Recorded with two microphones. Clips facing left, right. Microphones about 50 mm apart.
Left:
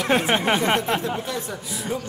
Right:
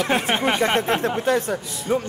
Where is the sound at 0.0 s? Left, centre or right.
Centre.